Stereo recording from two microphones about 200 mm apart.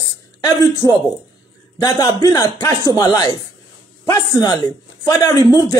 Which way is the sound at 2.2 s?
15° left (ahead or behind).